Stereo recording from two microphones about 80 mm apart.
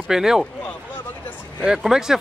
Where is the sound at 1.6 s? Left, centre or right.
Centre.